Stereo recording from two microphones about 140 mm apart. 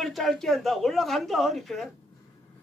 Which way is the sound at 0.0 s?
Centre (ahead or behind).